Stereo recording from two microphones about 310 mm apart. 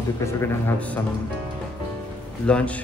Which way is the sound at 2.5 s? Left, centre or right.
Centre.